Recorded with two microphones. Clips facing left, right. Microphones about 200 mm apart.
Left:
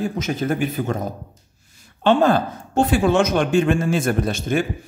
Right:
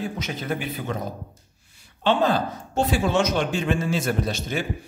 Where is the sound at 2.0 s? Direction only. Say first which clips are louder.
Left 5 dB; 50° left (ahead or behind).